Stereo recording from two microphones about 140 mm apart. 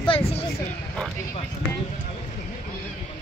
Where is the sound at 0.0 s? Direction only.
40° left (ahead or behind).